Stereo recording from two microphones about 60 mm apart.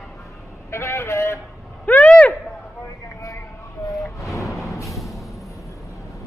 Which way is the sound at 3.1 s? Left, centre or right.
Left.